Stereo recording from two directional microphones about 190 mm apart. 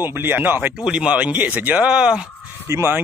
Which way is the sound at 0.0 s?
10° right (ahead or behind).